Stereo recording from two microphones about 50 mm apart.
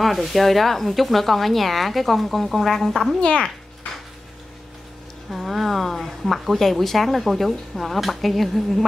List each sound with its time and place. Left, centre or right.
0.0 s speech: centre
3.2 s a child's voice: left
5.3 s speech: centre